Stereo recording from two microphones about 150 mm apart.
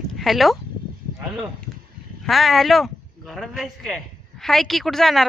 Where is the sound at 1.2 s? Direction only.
10° right (ahead or behind).